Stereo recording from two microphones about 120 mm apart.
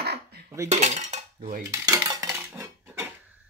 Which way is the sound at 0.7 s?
75° right (ahead or behind).